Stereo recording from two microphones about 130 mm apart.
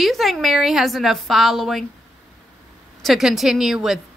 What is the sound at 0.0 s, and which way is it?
A woman's voice, centre (ahead or behind).